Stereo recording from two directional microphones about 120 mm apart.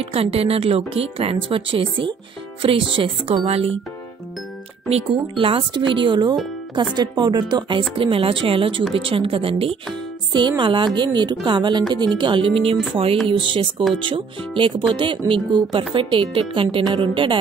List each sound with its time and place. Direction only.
0.0 s speech: 50° right (ahead or behind)
5.4 s a woman's voice: 45° right (ahead or behind)